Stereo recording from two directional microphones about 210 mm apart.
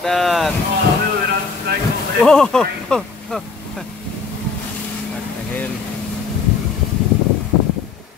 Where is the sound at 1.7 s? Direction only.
50° right (ahead or behind).